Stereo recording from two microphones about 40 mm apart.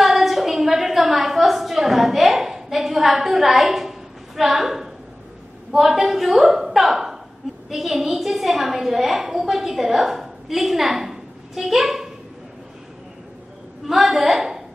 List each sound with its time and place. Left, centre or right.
0.0 s a sound: centre
4.4 s a woman's voice: centre
13.8 s a woman's voice: centre